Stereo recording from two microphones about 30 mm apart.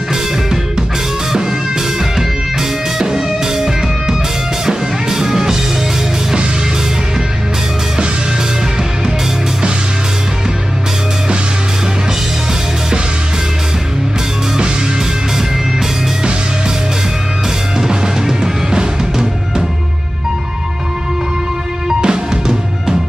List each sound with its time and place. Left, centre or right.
3.0 s music: centre
17.7 s music: centre
21.8 s drum: right